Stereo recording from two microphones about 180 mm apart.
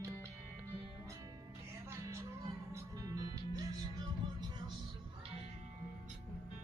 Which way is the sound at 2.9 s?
20° right (ahead or behind).